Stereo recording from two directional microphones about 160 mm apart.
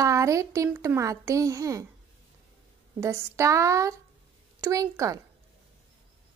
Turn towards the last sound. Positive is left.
turn(degrees=-20)  # may be behind; listen again after turning